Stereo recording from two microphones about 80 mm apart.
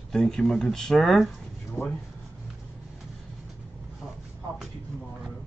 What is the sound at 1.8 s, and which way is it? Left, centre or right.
Speech, left.